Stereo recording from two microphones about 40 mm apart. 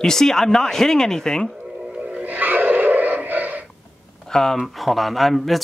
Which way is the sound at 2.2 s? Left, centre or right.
Right.